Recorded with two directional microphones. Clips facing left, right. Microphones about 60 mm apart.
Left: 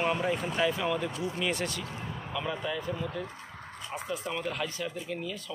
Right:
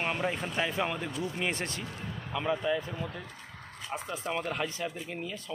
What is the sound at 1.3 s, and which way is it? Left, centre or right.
Speech, right.